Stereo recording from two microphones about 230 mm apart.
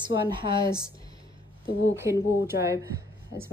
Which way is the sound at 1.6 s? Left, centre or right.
Left.